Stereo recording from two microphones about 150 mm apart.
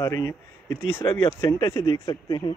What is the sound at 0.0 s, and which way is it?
Speech, 20° left (ahead or behind).